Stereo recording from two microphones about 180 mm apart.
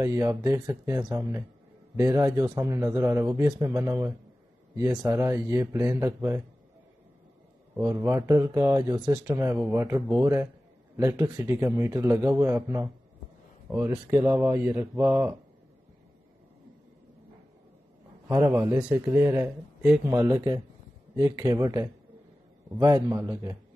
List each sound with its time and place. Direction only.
0.0 s a man's voice: 15° right (ahead or behind)
7.7 s a man's voice: 15° right (ahead or behind)
18.3 s a man's voice: 15° right (ahead or behind)